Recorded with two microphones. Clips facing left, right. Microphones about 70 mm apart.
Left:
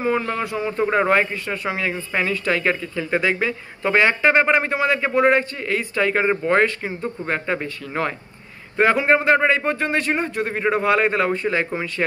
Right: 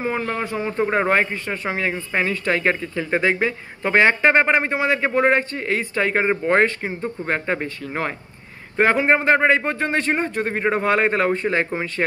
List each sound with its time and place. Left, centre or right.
0.0 s a man's voice: right